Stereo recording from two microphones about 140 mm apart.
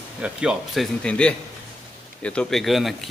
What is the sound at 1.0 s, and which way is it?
A man's voice, 5° left (ahead or behind).